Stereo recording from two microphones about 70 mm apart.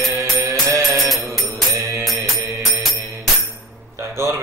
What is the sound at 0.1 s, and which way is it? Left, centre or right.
Music, right.